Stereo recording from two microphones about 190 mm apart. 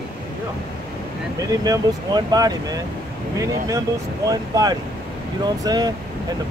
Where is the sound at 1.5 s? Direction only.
20° right (ahead or behind).